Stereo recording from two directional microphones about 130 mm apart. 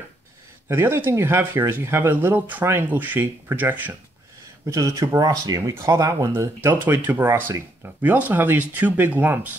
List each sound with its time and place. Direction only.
0.7 s speech: 20° right (ahead or behind)
4.6 s speech: 25° right (ahead or behind)